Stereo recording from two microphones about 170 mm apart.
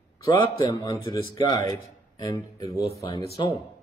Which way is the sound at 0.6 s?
25° left (ahead or behind).